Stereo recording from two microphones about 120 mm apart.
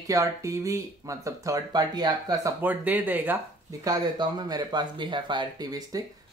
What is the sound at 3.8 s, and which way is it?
Speech, 30° right (ahead or behind).